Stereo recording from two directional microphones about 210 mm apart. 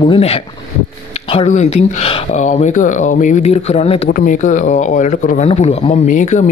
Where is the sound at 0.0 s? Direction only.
25° left (ahead or behind).